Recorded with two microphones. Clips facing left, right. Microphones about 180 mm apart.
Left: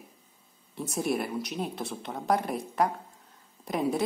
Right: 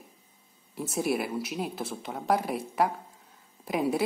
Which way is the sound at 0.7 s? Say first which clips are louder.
Right 1 dB; 5° right (ahead or behind).